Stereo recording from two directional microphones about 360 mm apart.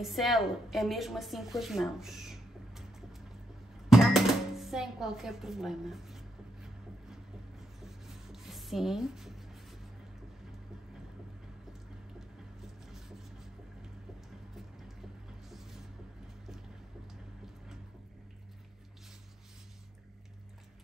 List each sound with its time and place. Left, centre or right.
0.0 s a woman's voice: centre
3.9 s a sound: centre
15.5 s music: centre